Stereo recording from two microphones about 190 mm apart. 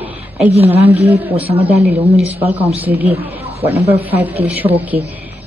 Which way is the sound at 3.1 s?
30° right (ahead or behind).